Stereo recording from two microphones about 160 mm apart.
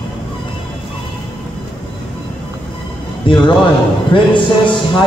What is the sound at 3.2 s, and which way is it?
A man's voice, 30° left (ahead or behind).